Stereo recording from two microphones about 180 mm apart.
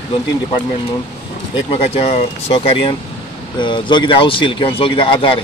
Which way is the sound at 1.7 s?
35° left (ahead or behind).